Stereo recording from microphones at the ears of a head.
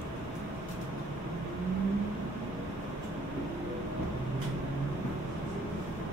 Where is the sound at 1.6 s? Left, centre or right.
Right.